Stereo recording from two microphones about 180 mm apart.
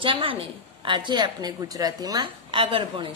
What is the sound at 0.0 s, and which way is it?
A woman's voice, 30° right (ahead or behind).